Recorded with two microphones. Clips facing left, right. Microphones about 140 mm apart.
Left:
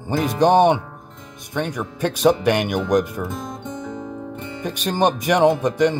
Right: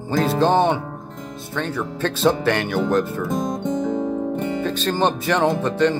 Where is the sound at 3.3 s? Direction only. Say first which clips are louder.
Right 7 dB; 45° right (ahead or behind).